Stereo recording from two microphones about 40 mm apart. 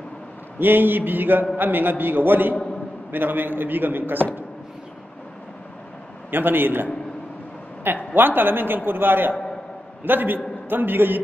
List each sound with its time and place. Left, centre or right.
0.6 s a man's voice: right
6.3 s a man's voice: right